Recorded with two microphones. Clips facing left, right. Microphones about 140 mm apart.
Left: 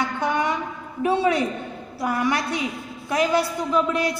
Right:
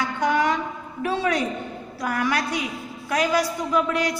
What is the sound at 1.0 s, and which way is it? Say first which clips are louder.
A woman's voice: left 3 dB; 25° left (ahead or behind).